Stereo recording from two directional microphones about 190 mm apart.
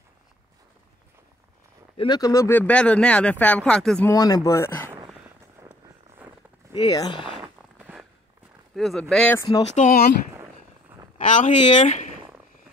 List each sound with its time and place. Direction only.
2.0 s speech: 20° left (ahead or behind); by 4.1 s 5° left (ahead or behind)
4.1 s speech: 20° left (ahead or behind)
5.6 s vehicle: 15° right (ahead or behind)
6.7 s speech: 20° left (ahead or behind)
7.8 s walk: 5° right (ahead or behind)
8.7 s speech: centre (ahead or behind)
9.6 s speech: 40° left (ahead or behind)
11.1 s speech: 40° left (ahead or behind)